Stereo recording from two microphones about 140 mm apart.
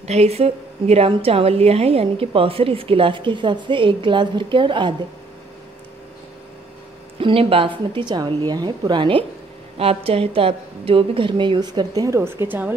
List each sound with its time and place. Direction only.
0.0 s speech: 50° right (ahead or behind)
7.2 s speech: 40° right (ahead or behind); by 12.7 s 15° right (ahead or behind)